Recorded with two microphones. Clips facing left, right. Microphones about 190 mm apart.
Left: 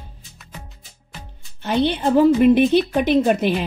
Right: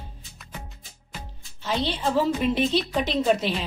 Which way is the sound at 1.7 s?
60° left (ahead or behind).